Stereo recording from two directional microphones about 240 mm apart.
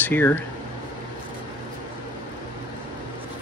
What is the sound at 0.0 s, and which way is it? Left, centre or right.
Speech, centre.